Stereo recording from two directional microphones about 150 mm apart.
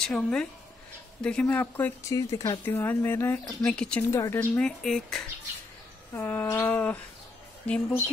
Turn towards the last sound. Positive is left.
turn(degrees=10)  # may be behind; listen again after turning